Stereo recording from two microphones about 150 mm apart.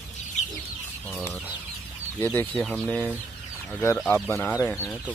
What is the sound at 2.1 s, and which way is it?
Speech, 10° left (ahead or behind).